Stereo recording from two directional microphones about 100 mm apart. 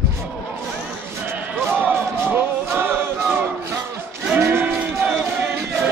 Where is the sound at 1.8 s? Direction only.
20° right (ahead or behind).